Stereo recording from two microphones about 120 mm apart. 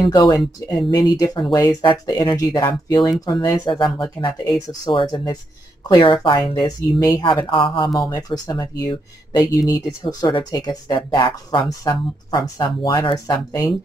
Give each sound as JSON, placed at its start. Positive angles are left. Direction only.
{"t": 0.0, "sound": "speech", "side_deg": 30}
{"t": 7.2, "sound": "speech", "side_deg": 45}
{"t": 8.1, "sound": "speech", "side_deg": 35}
{"t": 13.3, "sound": "speech", "side_deg": 30}